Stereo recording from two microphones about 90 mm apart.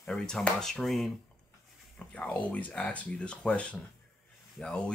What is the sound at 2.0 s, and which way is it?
Speech, 15° left (ahead or behind).